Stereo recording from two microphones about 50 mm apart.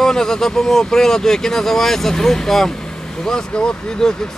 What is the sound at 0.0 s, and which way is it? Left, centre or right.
Speech, centre.